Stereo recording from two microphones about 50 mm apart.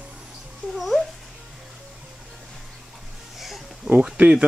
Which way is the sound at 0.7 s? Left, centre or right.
Centre.